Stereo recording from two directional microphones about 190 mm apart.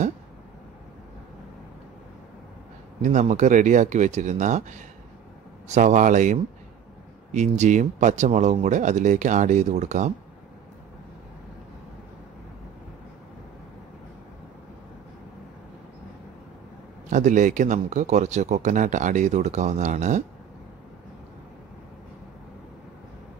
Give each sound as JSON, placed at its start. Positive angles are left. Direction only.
{"t": 3.0, "sound": "speech", "side_deg": -40}
{"t": 17.1, "sound": "speech", "side_deg": -40}